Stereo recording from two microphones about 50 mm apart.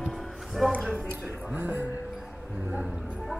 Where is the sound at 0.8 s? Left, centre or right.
Centre.